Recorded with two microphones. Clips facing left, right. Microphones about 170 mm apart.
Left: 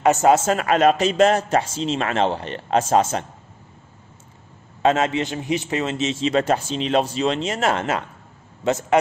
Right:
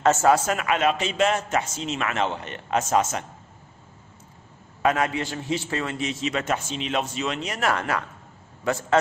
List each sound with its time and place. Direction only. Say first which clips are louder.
0.0 s a man's voice: left 3 dB; 15° left (ahead or behind)
4.8 s a man's voice: left 4 dB; 25° left (ahead or behind)